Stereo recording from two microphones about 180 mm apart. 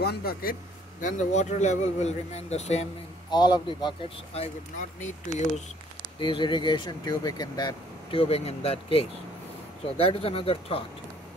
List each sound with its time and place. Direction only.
0.0 s a man's voice: 60° left (ahead or behind)
1.0 s speech: 40° left (ahead or behind)
3.3 s speech: 25° left (ahead or behind); by 5.5 s 40° left (ahead or behind)
6.1 s speech: 25° left (ahead or behind)